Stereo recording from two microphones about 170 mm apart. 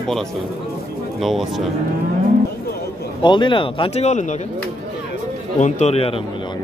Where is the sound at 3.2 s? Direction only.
25° left (ahead or behind).